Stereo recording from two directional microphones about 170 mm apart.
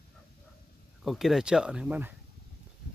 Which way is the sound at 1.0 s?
Centre (ahead or behind).